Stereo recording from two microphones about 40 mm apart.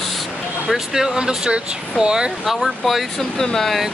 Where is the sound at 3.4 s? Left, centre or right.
Centre.